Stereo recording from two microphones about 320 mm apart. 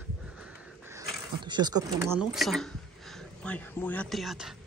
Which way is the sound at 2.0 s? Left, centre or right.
Centre.